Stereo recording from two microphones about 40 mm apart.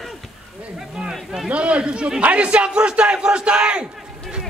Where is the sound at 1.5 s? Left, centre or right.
Right.